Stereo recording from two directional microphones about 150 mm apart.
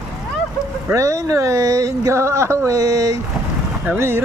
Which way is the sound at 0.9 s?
20° right (ahead or behind).